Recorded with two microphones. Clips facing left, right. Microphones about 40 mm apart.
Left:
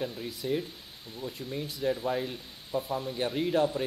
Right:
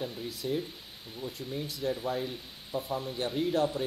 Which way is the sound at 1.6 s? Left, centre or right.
Centre.